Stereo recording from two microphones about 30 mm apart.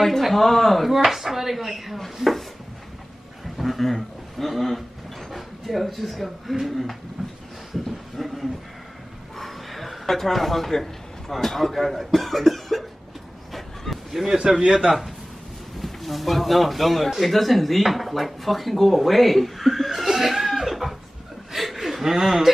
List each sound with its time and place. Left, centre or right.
0.4 s speech: centre
0.8 s speech: centre
3.5 s a man's voice: centre
8.2 s a sound: centre
9.4 s a man's voice: centre
13.5 s a sound: centre
14.2 s a man's voice: centre
15.8 s speech: centre
21.5 s chuckle: centre
22.1 s speech: centre